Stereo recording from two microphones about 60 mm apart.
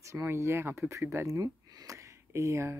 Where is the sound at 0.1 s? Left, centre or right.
Right.